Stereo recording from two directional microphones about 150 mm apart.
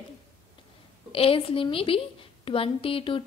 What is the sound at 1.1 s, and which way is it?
A woman's voice, 40° left (ahead or behind).